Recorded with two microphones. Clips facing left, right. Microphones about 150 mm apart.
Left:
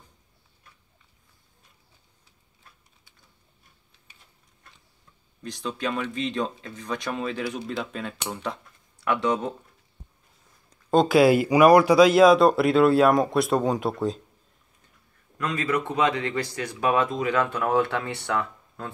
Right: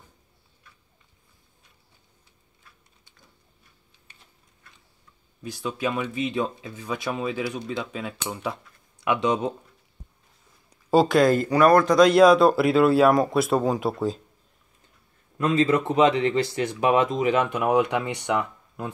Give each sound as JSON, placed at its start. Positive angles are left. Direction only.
{"t": 5.4, "sound": "speech", "side_deg": -5}
{"t": 10.7, "sound": "a sound", "side_deg": -5}
{"t": 11.1, "sound": "speech", "side_deg": 10}
{"t": 15.3, "sound": "speech", "side_deg": -25}